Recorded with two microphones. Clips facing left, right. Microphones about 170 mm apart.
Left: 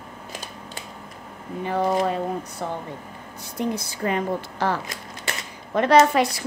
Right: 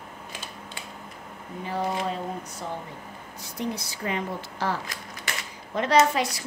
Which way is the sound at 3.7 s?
50° left (ahead or behind).